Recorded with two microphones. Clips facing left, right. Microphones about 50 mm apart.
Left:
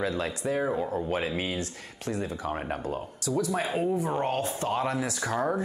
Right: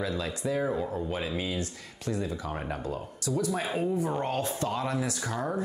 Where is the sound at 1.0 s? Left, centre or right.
Left.